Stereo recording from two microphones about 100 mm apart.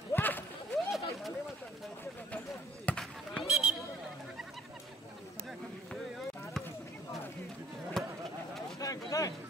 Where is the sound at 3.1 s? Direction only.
Centre (ahead or behind).